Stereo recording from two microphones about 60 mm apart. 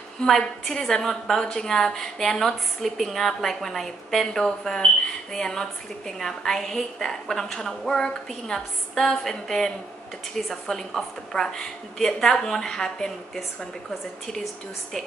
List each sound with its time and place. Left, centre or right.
0.2 s a woman's voice: centre